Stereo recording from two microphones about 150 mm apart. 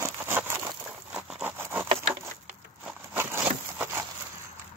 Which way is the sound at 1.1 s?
5° right (ahead or behind).